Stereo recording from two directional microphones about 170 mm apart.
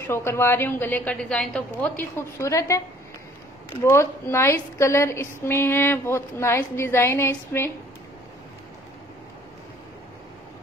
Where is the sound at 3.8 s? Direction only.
15° left (ahead or behind).